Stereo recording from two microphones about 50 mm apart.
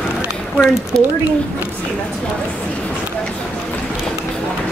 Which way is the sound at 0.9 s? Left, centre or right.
Centre.